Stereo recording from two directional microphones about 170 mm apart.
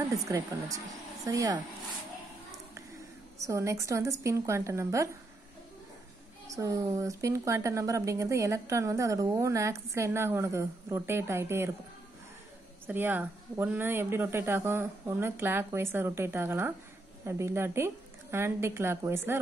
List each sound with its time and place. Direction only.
0.3 s speech: 20° right (ahead or behind)
3.4 s a woman's voice: 20° right (ahead or behind)
6.4 s a woman's voice: 20° right (ahead or behind)
12.8 s a woman's voice: 10° right (ahead or behind)